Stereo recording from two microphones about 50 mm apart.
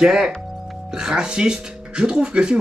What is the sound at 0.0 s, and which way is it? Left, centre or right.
Speech, centre.